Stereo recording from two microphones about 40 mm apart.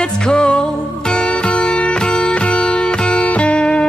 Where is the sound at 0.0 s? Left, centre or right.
Centre.